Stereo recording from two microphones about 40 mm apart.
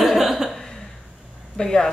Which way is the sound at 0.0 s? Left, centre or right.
Centre.